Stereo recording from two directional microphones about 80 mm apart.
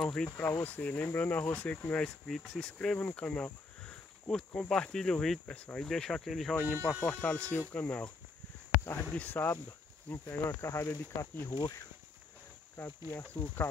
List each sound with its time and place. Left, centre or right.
0.0 s speech: centre
0.4 s speech: left
2.2 s speech: centre
3.1 s cricket: centre
4.6 s speech: centre
6.5 s speech: centre
8.7 s a sound: left
9.1 s speech: left
13.2 s speech: centre